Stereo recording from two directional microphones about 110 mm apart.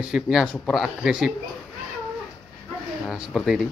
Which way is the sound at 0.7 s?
5° right (ahead or behind).